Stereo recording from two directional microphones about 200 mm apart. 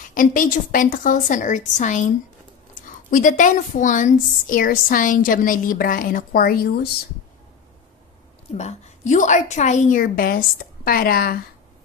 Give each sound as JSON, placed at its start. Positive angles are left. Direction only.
{"t": 0.1, "sound": "a woman's voice", "side_deg": 45}
{"t": 3.1, "sound": "a woman's voice", "side_deg": 40}
{"t": 8.5, "sound": "a woman's voice", "side_deg": 35}